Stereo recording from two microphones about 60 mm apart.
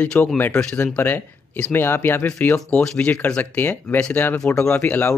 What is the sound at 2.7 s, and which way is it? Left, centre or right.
Speech, left.